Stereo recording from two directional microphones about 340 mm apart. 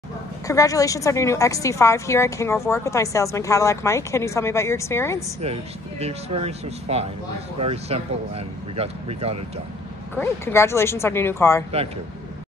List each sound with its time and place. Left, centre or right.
0.5 s a woman's voice: centre
5.4 s speech: centre
10.1 s a woman's voice: centre